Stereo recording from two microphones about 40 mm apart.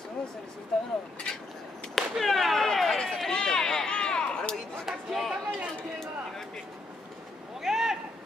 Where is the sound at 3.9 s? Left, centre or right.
Left.